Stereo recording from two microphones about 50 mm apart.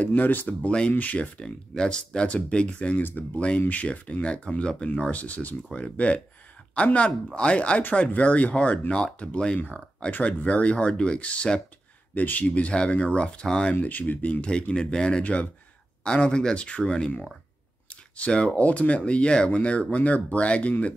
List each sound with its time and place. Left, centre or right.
0.0 s speech: left
0.7 s speech: left
3.0 s speech: left
3.3 s speech: left
12.1 s speech: left; by 13.7 s centre
13.7 s speech: left; by 17.1 s centre
18.1 s speech: left